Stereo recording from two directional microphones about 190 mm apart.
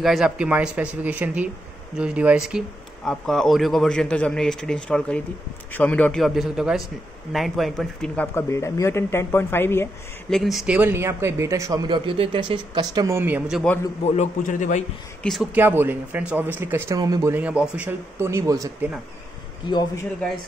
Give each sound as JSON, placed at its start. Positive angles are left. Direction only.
{"t": 0.0, "sound": "a man's voice", "side_deg": 0}
{"t": 10.3, "sound": "speech", "side_deg": 0}
{"t": 14.0, "sound": "a man's voice", "side_deg": 35}
{"t": 15.5, "sound": "speech", "side_deg": -10}
{"t": 19.7, "sound": "a man's voice", "side_deg": 20}